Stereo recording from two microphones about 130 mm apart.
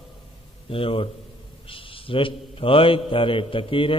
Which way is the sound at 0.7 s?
45° left (ahead or behind).